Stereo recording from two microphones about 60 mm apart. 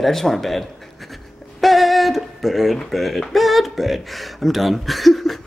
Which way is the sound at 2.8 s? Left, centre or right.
Centre.